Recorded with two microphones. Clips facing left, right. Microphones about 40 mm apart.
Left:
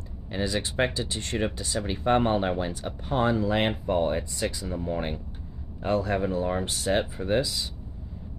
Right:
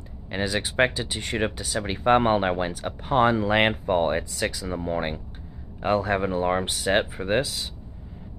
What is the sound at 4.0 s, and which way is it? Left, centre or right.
Speech, right.